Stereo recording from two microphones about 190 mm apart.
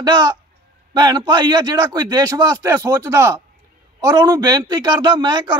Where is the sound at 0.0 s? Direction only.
20° right (ahead or behind).